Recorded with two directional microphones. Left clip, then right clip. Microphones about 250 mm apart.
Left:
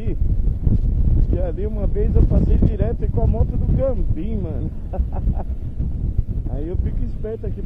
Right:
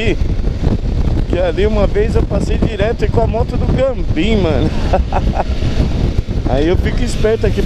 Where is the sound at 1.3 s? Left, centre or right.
Centre.